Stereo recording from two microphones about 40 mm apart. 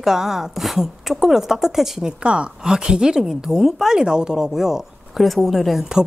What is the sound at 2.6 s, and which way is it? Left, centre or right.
A woman's voice, centre.